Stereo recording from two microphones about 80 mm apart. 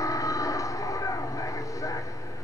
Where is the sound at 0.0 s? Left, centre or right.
Left.